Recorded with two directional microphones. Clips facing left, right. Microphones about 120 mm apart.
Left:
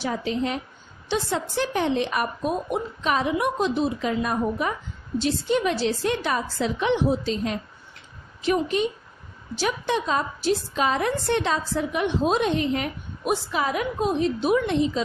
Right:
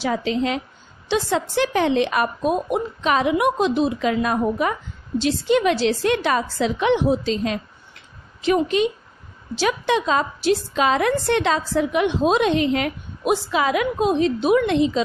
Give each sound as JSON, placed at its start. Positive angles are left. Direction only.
{"t": 0.0, "sound": "a woman's voice", "side_deg": -90}